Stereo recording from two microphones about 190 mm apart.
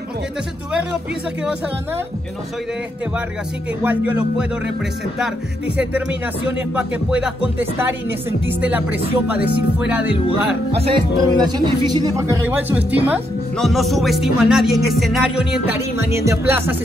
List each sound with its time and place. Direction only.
3.8 s speech: 10° right (ahead or behind)
6.7 s speech: 5° right (ahead or behind)
11.1 s speech: 20° right (ahead or behind)